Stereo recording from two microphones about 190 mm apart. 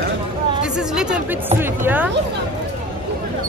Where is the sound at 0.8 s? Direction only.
5° right (ahead or behind).